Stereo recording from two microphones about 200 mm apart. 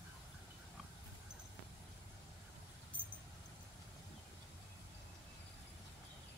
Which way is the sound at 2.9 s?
5° left (ahead or behind).